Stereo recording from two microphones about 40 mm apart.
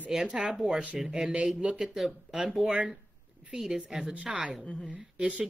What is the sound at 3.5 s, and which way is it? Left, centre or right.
Speech, centre.